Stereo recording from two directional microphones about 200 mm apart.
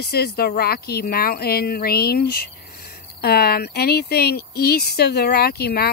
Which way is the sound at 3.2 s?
50° left (ahead or behind).